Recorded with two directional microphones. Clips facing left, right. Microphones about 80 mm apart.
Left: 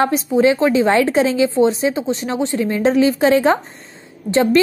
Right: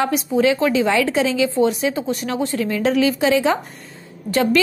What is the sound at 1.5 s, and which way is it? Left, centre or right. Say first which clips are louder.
A woman's voice: left 3 dB; left.